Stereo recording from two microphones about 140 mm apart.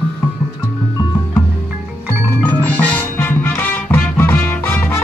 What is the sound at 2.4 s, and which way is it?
Music, 15° left (ahead or behind).